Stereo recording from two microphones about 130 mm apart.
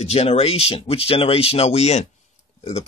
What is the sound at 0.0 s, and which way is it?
Speech, 50° left (ahead or behind).